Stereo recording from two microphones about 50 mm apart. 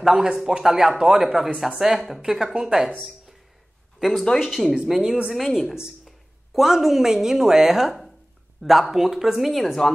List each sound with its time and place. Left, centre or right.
0.0 s speech: centre
4.0 s speech: centre
4.7 s speech: centre
5.3 s a woman's voice: centre